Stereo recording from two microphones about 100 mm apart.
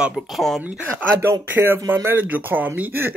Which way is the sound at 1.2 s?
25° right (ahead or behind).